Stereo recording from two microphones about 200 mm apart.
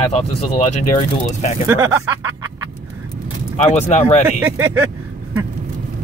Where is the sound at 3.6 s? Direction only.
35° left (ahead or behind).